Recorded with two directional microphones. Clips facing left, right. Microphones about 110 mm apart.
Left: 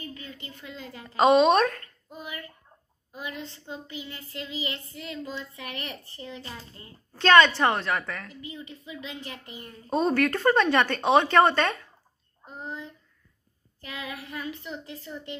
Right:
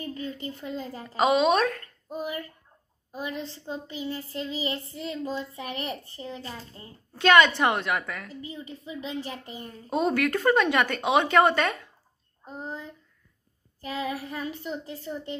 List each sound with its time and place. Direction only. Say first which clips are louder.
0.1 s child singing: right 8 dB; 40° right (ahead or behind)
1.1 s a woman's voice: left 3 dB; 5° right (ahead or behind)
2.0 s a child's voice: right 7 dB; 35° right (ahead or behind)
3.6 s child singing: right 5 dB; 35° right (ahead or behind)
7.2 s speech: left 1 dB; 10° right (ahead or behind)
8.5 s child singing: right 2 dB; 30° right (ahead or behind)
9.8 s speech: left 1 dB; 10° right (ahead or behind)
13.8 s child singing: right 6 dB; 35° right (ahead or behind)